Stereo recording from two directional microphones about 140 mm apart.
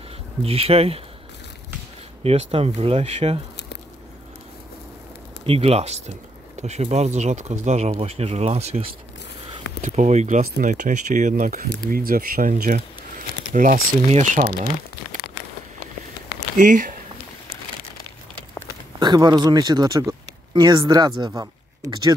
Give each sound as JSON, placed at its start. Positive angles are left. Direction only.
{"t": 0.4, "sound": "speech", "side_deg": -45}
{"t": 2.2, "sound": "speech", "side_deg": -45}
{"t": 5.5, "sound": "speech", "side_deg": -45}
{"t": 9.8, "sound": "speech", "side_deg": -60}
{"t": 11.9, "sound": "speech", "side_deg": -90}
{"t": 16.5, "sound": "speech", "side_deg": -70}
{"t": 18.9, "sound": "speech", "side_deg": -30}